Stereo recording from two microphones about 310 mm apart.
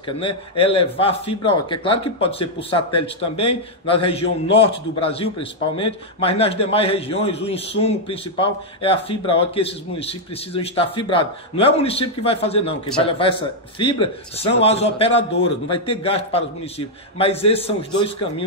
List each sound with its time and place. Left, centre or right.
0.0 s a man's voice: centre